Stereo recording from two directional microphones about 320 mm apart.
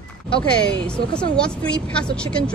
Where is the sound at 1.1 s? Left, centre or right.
Centre.